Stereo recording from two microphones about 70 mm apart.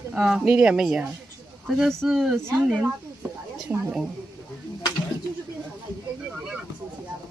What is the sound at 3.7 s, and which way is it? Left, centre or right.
Speech, right.